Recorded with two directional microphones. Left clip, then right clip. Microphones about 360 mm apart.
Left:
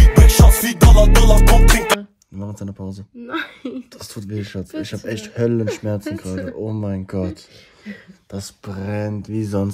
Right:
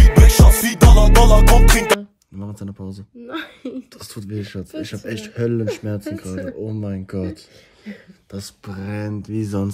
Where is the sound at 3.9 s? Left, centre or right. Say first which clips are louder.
Left 1 dB; centre.